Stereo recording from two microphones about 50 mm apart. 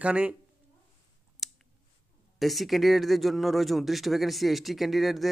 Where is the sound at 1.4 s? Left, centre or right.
Centre.